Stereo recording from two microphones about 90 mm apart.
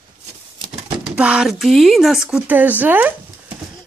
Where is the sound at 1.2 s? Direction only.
15° right (ahead or behind).